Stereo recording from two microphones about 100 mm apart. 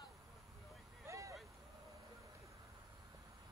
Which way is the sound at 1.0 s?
30° right (ahead or behind).